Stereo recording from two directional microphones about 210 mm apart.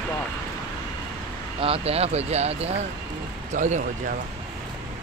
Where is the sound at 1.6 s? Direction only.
30° right (ahead or behind).